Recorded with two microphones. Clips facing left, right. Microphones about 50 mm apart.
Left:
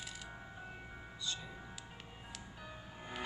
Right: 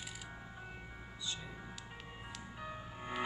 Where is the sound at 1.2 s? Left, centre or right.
Centre.